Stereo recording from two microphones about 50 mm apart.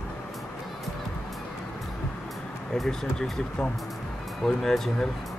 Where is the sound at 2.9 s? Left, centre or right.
Centre.